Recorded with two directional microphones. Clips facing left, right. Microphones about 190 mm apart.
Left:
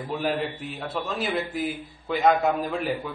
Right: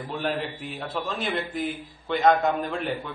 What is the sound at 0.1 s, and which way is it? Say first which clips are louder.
A man's voice: left 2 dB; 5° left (ahead or behind).